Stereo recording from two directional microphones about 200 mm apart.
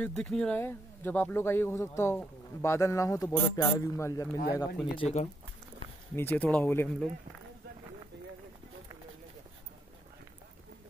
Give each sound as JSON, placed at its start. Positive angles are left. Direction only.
{"t": 0.0, "sound": "speech", "side_deg": 0}
{"t": 4.9, "sound": "speech", "side_deg": 30}
{"t": 6.1, "sound": "speech", "side_deg": 10}